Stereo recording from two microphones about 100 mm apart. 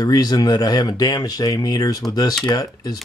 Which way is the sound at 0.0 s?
40° left (ahead or behind).